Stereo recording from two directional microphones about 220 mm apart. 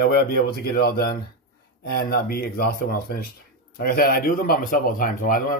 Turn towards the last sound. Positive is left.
turn(degrees=40)  # may be behind; listen again after turning